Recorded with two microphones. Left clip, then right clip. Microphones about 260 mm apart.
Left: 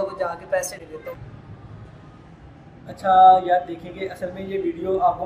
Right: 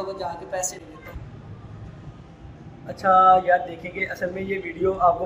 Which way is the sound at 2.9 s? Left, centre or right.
Centre.